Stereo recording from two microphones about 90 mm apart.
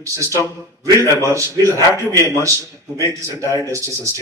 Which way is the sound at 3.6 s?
35° right (ahead or behind).